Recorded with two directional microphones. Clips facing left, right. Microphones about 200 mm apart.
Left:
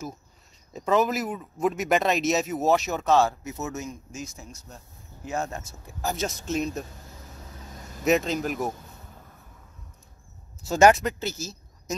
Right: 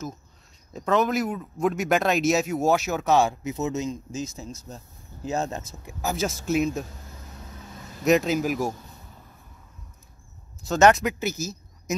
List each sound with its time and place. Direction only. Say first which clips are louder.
0.7 s speech: right 1 dB; 5° left (ahead or behind); by 5.9 s 20° right (ahead or behind)
6.0 s speech: right 3 dB; 5° right (ahead or behind)
8.0 s speech: right 2 dB; centre (ahead or behind)
10.7 s speech: even; 10° left (ahead or behind)
11.1 s speech: right 3 dB; 10° right (ahead or behind)